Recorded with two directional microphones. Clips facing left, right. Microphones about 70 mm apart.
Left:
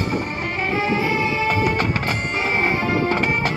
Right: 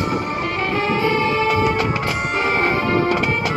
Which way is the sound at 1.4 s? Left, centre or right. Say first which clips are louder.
Right 2 dB; left.